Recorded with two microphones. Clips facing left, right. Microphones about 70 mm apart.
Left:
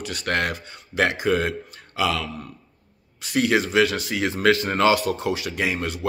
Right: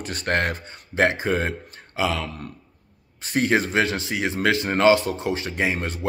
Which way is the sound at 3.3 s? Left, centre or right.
Right.